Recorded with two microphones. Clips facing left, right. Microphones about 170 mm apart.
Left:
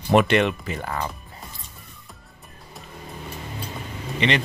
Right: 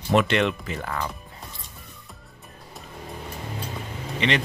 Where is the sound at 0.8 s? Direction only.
20° left (ahead or behind).